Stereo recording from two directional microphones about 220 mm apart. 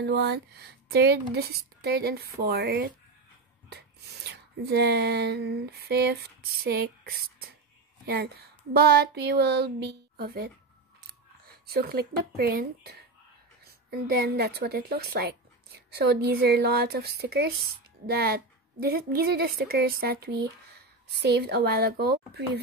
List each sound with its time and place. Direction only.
0.0 s speech: 50° right (ahead or behind)
11.6 s speech: 45° right (ahead or behind)